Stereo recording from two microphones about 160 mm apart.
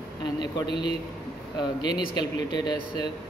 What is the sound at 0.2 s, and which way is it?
A man's voice, 30° left (ahead or behind).